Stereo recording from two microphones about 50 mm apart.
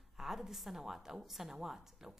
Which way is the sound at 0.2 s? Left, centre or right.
Centre.